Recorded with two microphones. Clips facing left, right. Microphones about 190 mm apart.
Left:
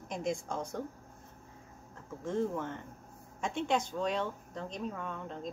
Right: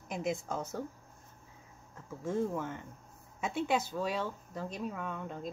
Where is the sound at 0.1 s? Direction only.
5° right (ahead or behind).